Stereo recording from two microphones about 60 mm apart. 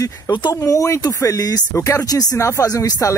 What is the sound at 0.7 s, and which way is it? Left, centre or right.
Speech, left.